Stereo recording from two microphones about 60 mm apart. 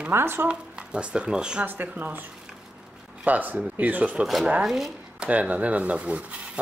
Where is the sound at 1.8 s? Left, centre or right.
Right.